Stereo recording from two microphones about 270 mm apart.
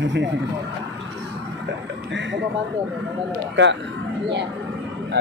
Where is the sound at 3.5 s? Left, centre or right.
Right.